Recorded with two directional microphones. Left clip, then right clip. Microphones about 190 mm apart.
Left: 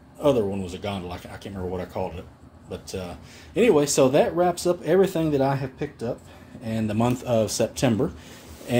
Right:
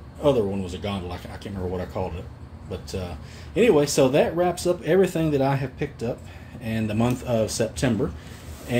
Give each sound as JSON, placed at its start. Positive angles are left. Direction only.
{"t": 0.2, "sound": "speech", "side_deg": 30}